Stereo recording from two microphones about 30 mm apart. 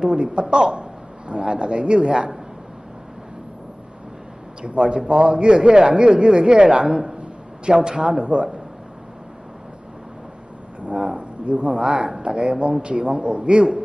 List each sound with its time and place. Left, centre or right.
0.0 s a man's voice: right
4.6 s a man's voice: right
6.9 s a man's voice: centre
8.3 s a man's voice: right
10.9 s a sound: right
11.8 s a man's voice: right